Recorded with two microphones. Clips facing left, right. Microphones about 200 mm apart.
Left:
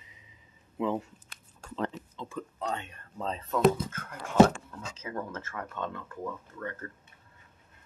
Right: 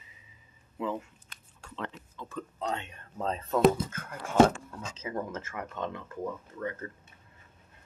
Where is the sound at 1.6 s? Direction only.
40° left (ahead or behind).